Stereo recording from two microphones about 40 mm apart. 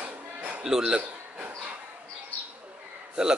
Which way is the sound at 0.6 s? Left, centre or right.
Centre.